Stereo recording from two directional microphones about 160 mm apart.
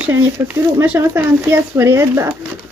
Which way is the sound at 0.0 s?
15° right (ahead or behind).